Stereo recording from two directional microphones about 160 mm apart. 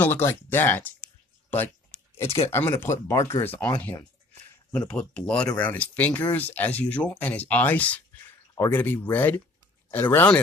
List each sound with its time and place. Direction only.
0.0 s speech: 15° left (ahead or behind)
2.5 s speech: 15° left (ahead or behind)